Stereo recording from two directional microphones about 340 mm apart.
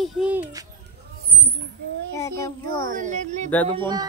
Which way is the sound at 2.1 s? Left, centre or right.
Centre.